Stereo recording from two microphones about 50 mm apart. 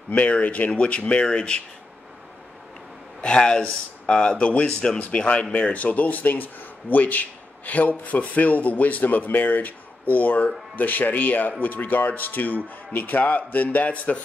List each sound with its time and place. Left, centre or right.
0.1 s speech: left
3.2 s speech: centre